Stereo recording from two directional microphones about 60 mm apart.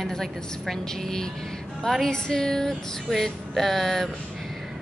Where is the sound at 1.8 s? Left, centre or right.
Centre.